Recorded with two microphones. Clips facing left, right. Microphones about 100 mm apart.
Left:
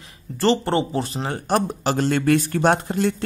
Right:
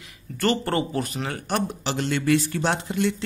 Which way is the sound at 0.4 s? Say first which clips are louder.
Left 4 dB; 25° left (ahead or behind).